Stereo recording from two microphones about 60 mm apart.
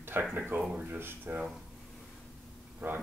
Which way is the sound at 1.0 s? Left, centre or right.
Right.